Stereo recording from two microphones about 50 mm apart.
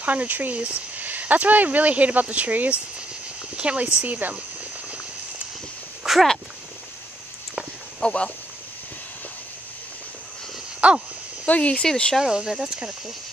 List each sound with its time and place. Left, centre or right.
0.0 s speech: right
6.0 s a sound: centre
8.0 s speech: left
10.8 s a sound: right
11.4 s speech: left
11.8 s speech: centre
12.2 s speech: centre